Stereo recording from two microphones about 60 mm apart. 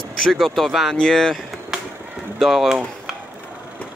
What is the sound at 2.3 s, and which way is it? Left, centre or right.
Speech, centre.